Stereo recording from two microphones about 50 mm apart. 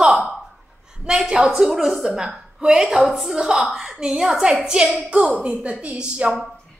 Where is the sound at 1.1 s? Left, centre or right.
Centre.